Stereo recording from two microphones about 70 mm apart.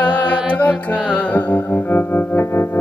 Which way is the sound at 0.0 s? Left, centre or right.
Centre.